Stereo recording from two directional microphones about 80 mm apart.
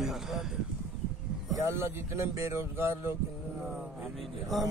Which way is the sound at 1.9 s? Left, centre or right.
Right.